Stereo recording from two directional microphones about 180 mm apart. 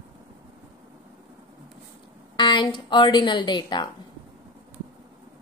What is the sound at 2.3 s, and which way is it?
A woman's voice, 25° left (ahead or behind).